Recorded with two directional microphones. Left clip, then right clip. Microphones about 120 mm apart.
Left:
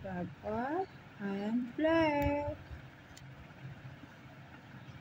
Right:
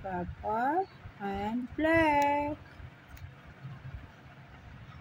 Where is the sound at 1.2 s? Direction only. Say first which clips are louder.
Right 3 dB; 40° right (ahead or behind).